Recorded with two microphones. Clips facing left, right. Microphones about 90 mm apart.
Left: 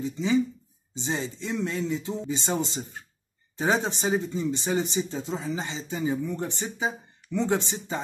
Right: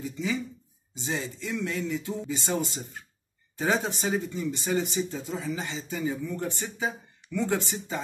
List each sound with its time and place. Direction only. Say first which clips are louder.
0.0 s speech: left 6 dB; 25° left (ahead or behind)